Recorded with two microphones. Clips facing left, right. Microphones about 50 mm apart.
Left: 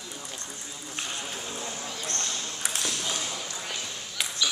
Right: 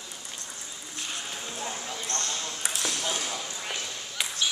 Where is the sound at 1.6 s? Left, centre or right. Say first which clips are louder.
Right 1 dB; centre.